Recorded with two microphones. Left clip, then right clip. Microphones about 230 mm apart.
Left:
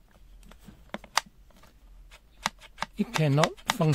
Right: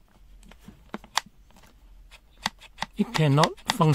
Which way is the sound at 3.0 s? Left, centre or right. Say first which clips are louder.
Right 3 dB; right.